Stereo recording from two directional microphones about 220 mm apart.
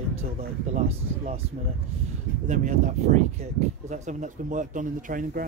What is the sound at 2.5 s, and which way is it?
Speech, 35° right (ahead or behind).